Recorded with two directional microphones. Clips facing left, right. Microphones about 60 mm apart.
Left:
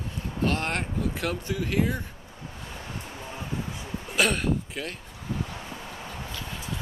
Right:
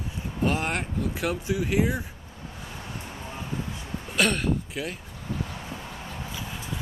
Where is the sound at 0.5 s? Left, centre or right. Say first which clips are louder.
Right 1 dB; centre.